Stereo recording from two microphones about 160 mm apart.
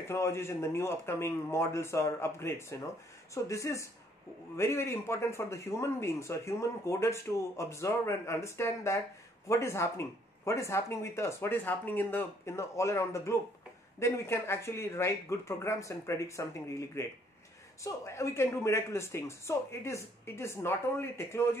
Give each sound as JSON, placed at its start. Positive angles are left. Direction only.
{"t": 0.1, "sound": "a man's voice", "side_deg": 15}